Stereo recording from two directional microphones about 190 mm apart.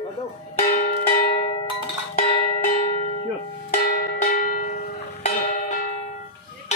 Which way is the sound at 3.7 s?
50° left (ahead or behind).